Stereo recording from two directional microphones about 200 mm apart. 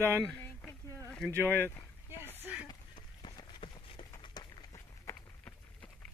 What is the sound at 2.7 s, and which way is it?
Run, 20° left (ahead or behind).